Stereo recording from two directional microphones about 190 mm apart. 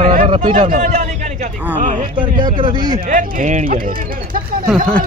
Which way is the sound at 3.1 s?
45° right (ahead or behind).